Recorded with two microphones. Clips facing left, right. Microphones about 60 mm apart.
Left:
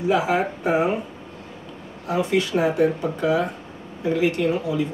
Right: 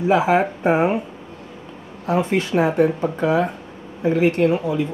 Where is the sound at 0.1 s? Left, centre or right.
Right.